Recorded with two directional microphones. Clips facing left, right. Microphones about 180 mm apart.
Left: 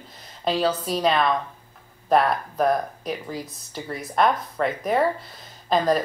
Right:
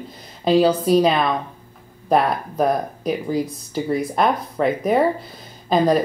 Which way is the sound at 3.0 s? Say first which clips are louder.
Right 9 dB; centre (ahead or behind).